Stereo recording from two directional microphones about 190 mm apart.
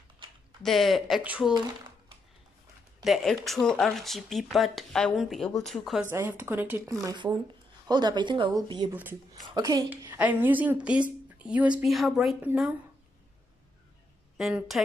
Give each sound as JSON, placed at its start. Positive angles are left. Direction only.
{"t": 0.6, "sound": "speech", "side_deg": 0}
{"t": 3.0, "sound": "speech", "side_deg": 0}
{"t": 6.0, "sound": "a woman's voice", "side_deg": -10}
{"t": 9.8, "sound": "a woman's voice", "side_deg": -10}
{"t": 14.3, "sound": "a woman's voice", "side_deg": 0}